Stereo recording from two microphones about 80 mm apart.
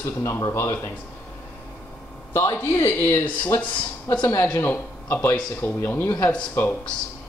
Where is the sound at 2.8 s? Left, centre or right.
Left.